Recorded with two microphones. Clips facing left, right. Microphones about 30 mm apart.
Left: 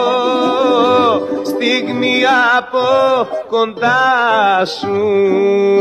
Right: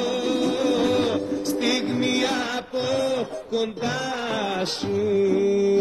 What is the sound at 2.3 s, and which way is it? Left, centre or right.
Mantra, left.